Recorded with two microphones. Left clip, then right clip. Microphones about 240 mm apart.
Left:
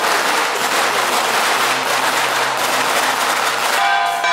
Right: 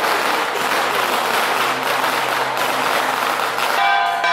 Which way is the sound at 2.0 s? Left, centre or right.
Right.